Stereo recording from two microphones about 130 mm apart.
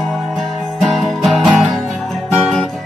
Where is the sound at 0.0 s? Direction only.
Centre (ahead or behind).